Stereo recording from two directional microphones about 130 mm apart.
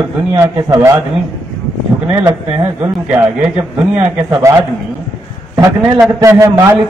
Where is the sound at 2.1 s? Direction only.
15° right (ahead or behind).